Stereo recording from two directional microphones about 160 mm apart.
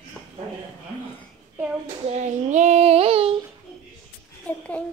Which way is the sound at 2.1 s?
45° right (ahead or behind).